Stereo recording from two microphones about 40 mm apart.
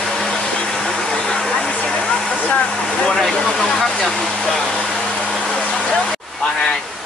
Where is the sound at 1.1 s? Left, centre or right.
Left.